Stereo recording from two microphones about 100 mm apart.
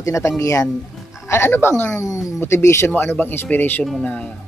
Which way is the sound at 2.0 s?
35° left (ahead or behind).